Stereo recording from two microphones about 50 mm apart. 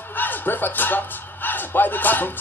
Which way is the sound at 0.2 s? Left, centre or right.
Left.